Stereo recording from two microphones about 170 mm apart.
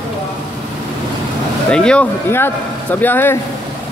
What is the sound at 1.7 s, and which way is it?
Speech, 5° left (ahead or behind).